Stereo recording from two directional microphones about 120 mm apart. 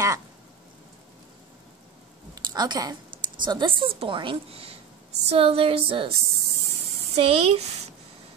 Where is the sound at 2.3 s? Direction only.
35° right (ahead or behind).